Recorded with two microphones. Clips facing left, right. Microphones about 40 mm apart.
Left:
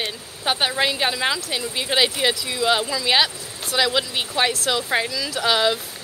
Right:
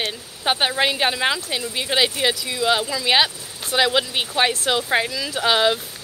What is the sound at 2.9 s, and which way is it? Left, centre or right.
Speech, centre.